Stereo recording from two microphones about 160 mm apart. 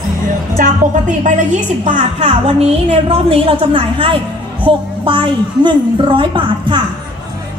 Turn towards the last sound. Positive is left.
turn(degrees=-30)  # may be behind; listen again after turning